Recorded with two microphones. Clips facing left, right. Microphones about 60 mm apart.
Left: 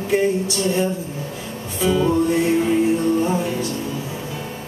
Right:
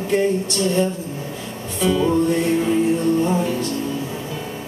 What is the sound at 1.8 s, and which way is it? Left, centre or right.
Music, centre.